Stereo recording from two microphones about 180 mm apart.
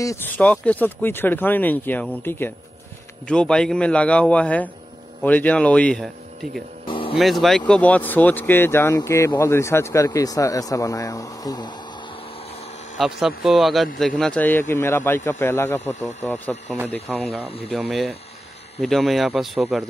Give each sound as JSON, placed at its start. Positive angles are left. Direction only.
{"t": 0.0, "sound": "speech", "side_deg": 15}
{"t": 6.9, "sound": "vehicle", "side_deg": 30}
{"t": 7.2, "sound": "speech", "side_deg": 0}
{"t": 12.9, "sound": "speech", "side_deg": 0}